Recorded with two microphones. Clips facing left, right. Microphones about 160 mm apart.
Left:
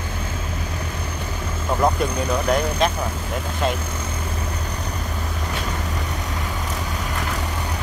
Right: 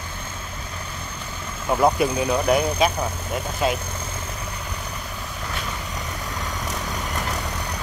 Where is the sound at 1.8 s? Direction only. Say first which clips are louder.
Right 2 dB; 5° right (ahead or behind).